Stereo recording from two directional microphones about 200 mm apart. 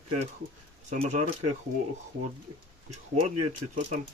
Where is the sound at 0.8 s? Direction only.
35° right (ahead or behind).